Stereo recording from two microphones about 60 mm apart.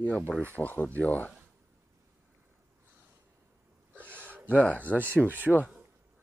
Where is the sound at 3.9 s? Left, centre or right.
Right.